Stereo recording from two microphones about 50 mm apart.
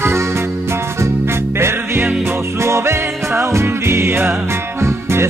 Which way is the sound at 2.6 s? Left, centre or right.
Right.